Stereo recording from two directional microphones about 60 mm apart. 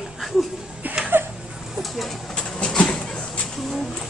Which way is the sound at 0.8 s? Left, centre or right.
Right.